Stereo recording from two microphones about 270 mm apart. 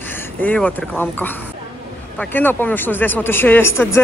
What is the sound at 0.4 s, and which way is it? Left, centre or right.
Speech, centre.